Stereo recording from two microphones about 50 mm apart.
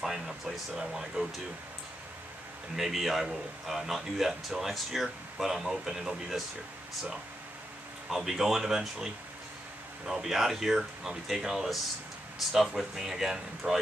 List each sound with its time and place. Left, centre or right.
0.0 s speech: centre
2.7 s speech: centre
8.1 s speech: centre